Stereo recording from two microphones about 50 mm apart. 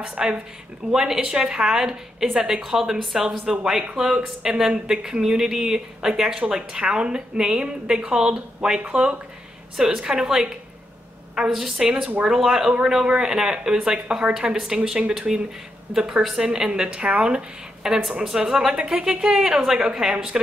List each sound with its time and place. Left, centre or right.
0.2 s speech: centre